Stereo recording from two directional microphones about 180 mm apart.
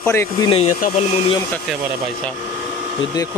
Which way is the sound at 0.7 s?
40° left (ahead or behind).